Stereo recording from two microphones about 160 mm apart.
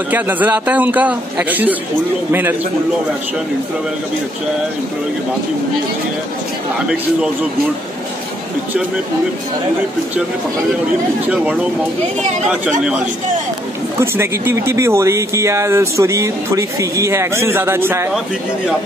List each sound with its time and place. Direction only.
0.1 s speech: 10° right (ahead or behind)
13.9 s speech: 15° right (ahead or behind)